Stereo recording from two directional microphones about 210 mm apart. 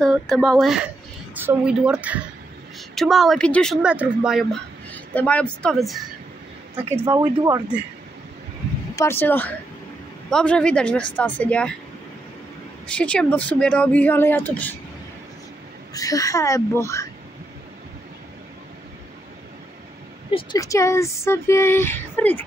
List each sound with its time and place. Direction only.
0.0 s a woman's voice: centre (ahead or behind)
7.1 s a woman's voice: 15° right (ahead or behind)
8.9 s speech: 10° left (ahead or behind)
12.9 s speech: 5° left (ahead or behind)
15.9 s speech: 15° left (ahead or behind)
20.2 s speech: 20° left (ahead or behind)